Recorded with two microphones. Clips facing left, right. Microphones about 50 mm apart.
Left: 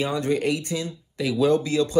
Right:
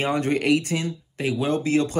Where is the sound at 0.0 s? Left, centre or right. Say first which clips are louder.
Right 1 dB; right.